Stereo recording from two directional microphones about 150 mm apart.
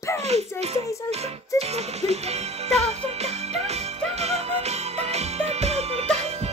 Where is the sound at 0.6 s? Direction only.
45° right (ahead or behind).